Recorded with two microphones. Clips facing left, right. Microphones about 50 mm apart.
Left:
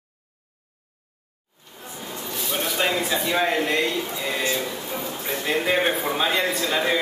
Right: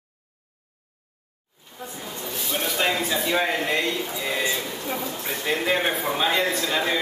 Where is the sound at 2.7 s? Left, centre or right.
Centre.